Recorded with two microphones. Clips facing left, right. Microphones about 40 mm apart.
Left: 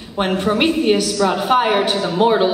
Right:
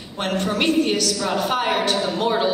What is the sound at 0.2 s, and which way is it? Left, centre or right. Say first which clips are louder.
A woman's voice: left 5 dB; centre.